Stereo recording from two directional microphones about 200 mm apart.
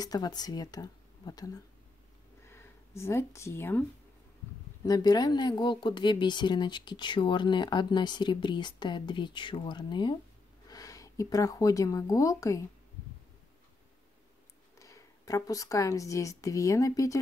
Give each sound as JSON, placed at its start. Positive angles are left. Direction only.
{"t": 0.0, "sound": "speech", "side_deg": 20}
{"t": 4.8, "sound": "speech", "side_deg": 20}
{"t": 14.8, "sound": "speech", "side_deg": 15}